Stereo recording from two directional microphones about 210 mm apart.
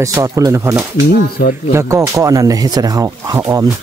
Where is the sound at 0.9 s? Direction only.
45° left (ahead or behind).